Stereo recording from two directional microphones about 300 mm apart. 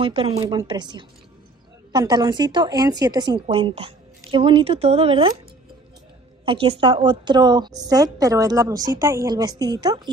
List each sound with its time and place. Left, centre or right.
0.0 s a woman's voice: centre
6.4 s a woman's voice: centre